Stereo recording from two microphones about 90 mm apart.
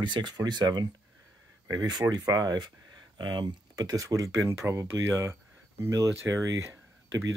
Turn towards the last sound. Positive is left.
turn(degrees=-35)  # may be behind; listen again after turning